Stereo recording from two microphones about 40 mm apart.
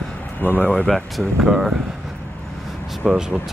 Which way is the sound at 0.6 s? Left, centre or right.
Left.